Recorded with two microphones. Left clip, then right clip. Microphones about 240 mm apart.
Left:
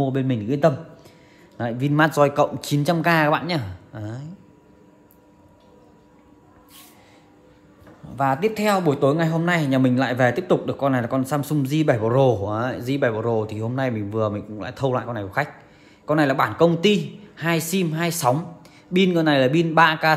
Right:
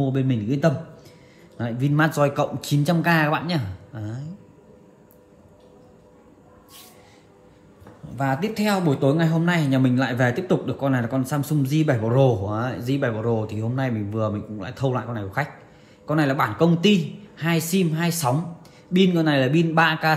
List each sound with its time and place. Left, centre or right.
0.0 s a man's voice: left
8.2 s speech: left